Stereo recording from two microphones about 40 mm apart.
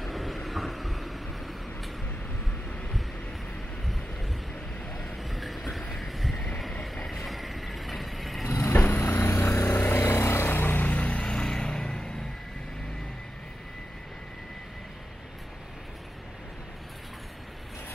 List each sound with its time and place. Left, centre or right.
0.0 s vehicle: centre
5.1 s vehicle: centre
5.9 s a sound: centre
6.3 s vehicle: centre
7.2 s vehicle: centre
8.5 s vehicle: left
10.9 s vehicle: left; by 12.1 s centre